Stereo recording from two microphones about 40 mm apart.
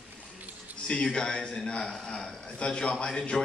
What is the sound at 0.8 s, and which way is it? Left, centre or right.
A man's voice, left.